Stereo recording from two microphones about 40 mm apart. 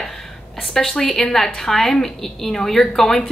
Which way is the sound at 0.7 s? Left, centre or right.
Centre.